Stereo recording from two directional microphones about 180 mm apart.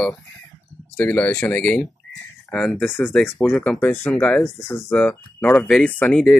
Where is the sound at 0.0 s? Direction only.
5° left (ahead or behind).